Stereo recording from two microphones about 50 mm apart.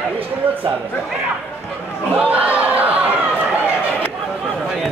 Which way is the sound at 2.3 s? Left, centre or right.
Right.